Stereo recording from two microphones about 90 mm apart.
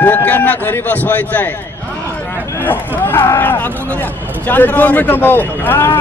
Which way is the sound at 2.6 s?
20° left (ahead or behind).